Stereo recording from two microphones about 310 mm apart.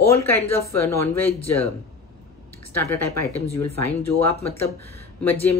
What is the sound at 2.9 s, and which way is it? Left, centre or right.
Speech, left.